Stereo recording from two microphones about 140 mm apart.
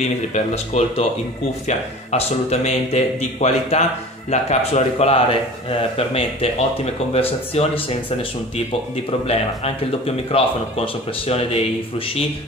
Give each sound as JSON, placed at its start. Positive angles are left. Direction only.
{"t": 0.0, "sound": "speech", "side_deg": 50}